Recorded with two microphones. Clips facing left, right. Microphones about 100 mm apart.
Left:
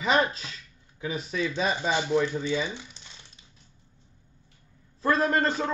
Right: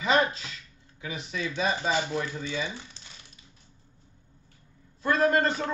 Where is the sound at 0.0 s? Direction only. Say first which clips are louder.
Even; 30° left (ahead or behind).